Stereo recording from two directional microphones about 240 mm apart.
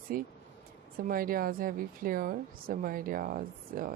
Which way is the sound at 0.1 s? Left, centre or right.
Right.